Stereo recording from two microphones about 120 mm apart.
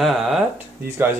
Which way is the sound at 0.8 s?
20° right (ahead or behind).